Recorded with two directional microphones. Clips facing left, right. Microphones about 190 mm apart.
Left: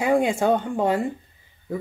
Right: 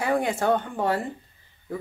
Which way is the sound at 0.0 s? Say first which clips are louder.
Left 4 dB; 15° left (ahead or behind).